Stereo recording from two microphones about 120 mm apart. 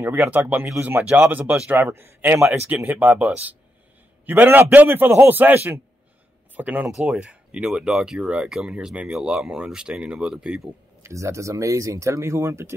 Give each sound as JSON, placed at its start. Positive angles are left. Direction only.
{"t": 0.0, "sound": "speech", "side_deg": -15}
{"t": 11.0, "sound": "speech", "side_deg": -25}